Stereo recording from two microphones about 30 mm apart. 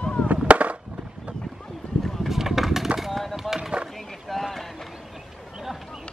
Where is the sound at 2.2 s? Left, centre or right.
Centre.